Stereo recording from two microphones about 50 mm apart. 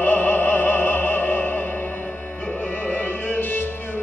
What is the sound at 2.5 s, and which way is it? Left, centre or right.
Music, left.